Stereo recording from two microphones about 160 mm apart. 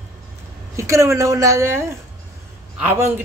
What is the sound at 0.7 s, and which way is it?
A man's voice, 20° right (ahead or behind).